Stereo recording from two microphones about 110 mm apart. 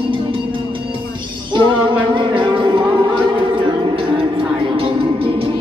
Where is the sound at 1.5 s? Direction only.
45° right (ahead or behind).